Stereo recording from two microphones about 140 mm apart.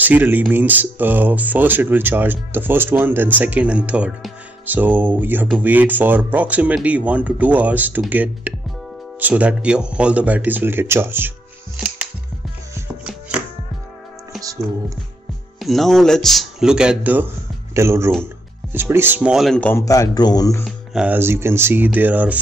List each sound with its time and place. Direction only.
0.0 s speech: 15° right (ahead or behind)
15.6 s speech: centre (ahead or behind)
19.7 s a man's voice: 25° left (ahead or behind)
20.6 s speech: 5° right (ahead or behind)